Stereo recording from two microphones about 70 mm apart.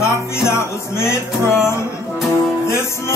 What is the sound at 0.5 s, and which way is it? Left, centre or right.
Music, left.